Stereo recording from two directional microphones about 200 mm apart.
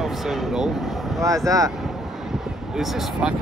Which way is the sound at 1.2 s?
15° right (ahead or behind).